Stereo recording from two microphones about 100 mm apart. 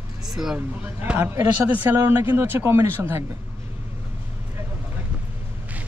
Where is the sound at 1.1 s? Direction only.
10° right (ahead or behind).